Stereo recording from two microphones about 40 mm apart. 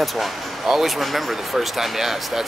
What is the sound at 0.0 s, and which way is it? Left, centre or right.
Speech, centre.